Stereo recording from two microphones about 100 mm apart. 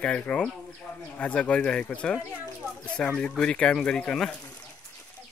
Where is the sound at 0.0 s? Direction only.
10° left (ahead or behind).